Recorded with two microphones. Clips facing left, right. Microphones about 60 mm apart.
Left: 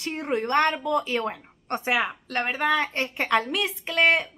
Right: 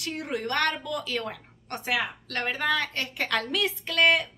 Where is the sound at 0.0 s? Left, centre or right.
Left.